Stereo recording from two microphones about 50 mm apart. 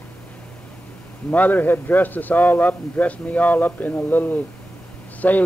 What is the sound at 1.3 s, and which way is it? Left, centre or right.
A man's voice, left.